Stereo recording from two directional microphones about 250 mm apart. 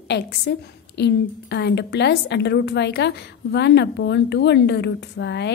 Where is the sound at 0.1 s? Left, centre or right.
Left.